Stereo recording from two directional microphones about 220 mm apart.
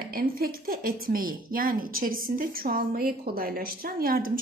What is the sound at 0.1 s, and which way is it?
Speech, 40° right (ahead or behind).